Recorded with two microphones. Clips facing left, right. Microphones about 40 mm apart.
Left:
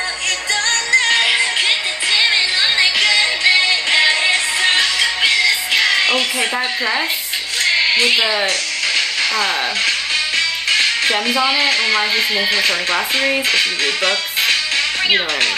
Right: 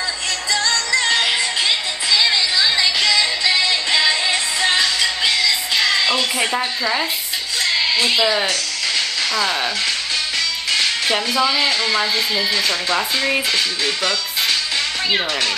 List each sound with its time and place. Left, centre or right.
0.7 s music: left
7.6 s music: left
10.7 s speech: left